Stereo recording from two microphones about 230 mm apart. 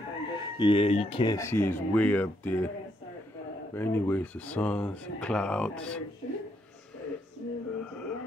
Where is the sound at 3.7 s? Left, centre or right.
Centre.